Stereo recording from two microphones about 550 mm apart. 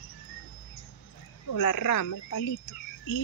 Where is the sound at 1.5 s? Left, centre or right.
Left.